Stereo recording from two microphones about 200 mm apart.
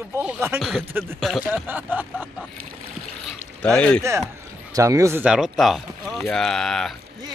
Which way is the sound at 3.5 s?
5° left (ahead or behind).